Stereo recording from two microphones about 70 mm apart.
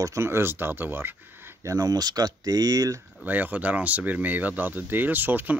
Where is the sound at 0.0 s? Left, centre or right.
Right.